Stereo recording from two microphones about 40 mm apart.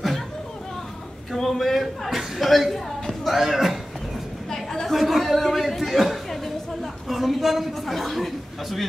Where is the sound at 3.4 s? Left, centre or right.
Centre.